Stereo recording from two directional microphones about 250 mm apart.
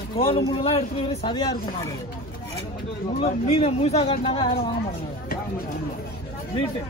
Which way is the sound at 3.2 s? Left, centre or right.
Left.